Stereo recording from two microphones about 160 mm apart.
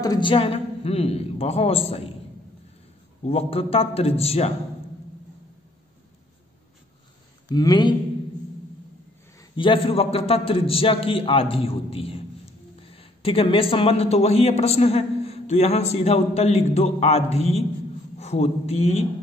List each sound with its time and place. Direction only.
0.0 s a man's voice: 25° left (ahead or behind)
3.3 s a man's voice: 40° left (ahead or behind)
7.4 s speech: 25° left (ahead or behind)
9.4 s a man's voice: 30° left (ahead or behind)